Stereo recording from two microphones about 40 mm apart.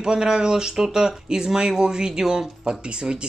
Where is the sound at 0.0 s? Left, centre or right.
Centre.